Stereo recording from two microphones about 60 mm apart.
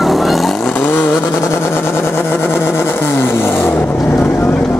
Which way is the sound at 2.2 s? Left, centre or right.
Left.